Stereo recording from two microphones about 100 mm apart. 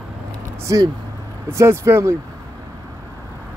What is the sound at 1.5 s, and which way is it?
Speech, 30° right (ahead or behind).